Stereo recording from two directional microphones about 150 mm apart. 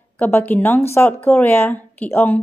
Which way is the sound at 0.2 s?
10° left (ahead or behind).